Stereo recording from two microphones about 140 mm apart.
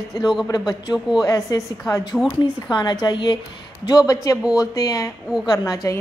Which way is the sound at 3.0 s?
30° left (ahead or behind).